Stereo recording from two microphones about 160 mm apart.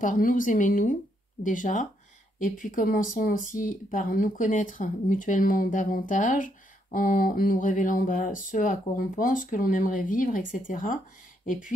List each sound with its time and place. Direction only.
0.0 s speech: 55° left (ahead or behind)